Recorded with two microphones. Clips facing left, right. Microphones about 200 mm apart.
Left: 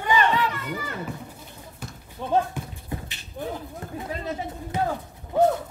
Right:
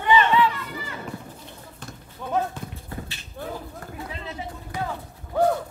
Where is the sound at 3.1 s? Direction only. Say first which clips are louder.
Left 2 dB; 20° left (ahead or behind).